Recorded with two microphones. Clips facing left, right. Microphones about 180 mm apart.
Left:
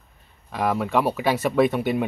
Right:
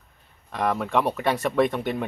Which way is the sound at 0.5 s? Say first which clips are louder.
Left 2 dB; 5° left (ahead or behind).